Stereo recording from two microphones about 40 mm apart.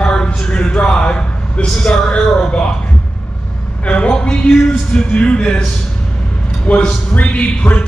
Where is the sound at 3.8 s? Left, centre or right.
Left.